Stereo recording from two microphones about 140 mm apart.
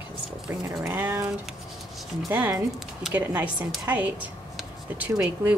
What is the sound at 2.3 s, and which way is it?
A woman's voice, 15° right (ahead or behind).